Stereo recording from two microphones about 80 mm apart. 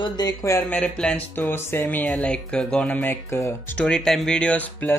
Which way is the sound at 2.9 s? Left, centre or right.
Left.